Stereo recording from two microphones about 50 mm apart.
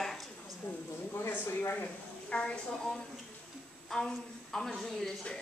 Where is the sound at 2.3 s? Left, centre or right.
Left.